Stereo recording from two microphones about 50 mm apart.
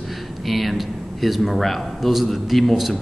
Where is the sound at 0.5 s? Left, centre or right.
Centre.